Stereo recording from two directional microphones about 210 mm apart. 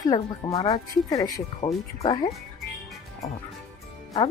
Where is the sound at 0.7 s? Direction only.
15° left (ahead or behind).